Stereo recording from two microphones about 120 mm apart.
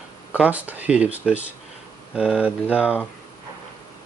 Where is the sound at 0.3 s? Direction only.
15° right (ahead or behind).